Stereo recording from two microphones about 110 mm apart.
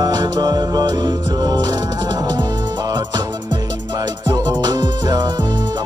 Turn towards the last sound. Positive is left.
turn(degrees=-40)  # may be behind; listen again after turning